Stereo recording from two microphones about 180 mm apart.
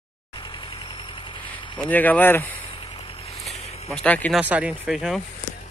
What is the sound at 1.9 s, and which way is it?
Speech, 10° left (ahead or behind).